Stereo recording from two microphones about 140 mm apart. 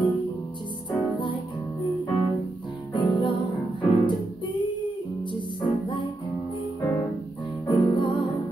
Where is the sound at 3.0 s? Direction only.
35° left (ahead or behind).